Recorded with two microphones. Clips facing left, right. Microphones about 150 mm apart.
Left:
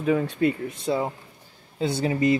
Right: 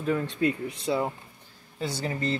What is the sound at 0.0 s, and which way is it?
Speech, 10° left (ahead or behind).